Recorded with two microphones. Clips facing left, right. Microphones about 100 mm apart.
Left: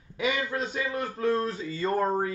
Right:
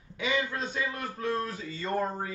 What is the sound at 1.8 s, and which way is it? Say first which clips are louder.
Speech: left 5 dB; 35° left (ahead or behind).